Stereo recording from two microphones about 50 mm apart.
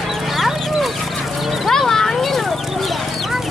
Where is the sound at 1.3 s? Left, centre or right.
Centre.